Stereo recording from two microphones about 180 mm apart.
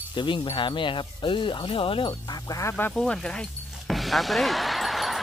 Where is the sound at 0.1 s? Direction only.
25° left (ahead or behind).